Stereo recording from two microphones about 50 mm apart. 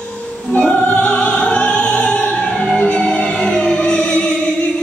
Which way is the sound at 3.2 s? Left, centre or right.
Left.